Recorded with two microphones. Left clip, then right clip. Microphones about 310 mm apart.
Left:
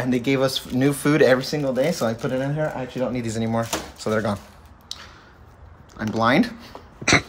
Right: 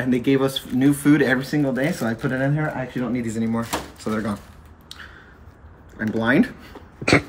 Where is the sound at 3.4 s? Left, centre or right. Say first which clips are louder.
Left 1 dB; left.